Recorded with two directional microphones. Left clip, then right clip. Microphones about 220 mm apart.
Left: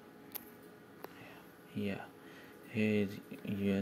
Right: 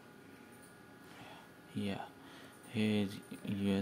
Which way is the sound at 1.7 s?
10° right (ahead or behind).